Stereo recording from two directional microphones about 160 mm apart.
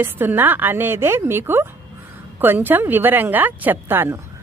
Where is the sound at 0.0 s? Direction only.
15° right (ahead or behind).